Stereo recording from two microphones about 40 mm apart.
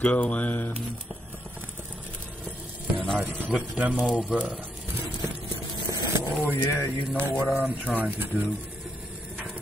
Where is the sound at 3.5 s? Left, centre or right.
Right.